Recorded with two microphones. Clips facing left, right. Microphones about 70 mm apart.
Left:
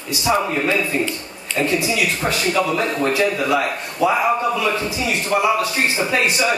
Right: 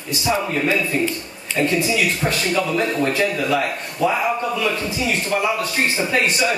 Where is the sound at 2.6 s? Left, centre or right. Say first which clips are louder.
Even; centre.